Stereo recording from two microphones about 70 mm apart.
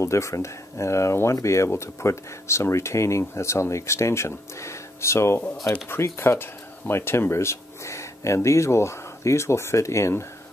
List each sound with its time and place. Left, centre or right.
0.0 s speech: left